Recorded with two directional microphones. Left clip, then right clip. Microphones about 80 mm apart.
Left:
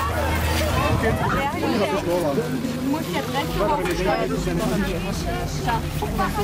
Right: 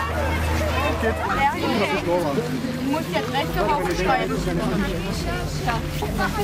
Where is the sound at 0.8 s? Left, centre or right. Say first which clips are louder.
Even; centre.